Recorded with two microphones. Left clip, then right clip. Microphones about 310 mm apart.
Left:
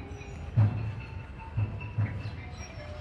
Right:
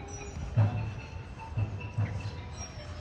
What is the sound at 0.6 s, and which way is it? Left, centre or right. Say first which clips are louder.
Music: even; right.